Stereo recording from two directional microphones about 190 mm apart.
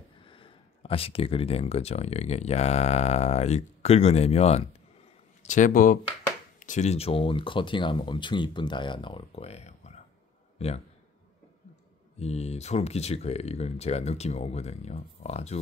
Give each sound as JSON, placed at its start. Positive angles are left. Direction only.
{"t": 0.2, "sound": "a man's voice", "side_deg": 25}
{"t": 12.2, "sound": "speech", "side_deg": 35}